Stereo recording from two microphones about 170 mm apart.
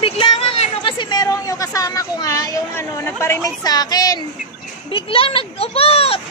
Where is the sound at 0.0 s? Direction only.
35° left (ahead or behind).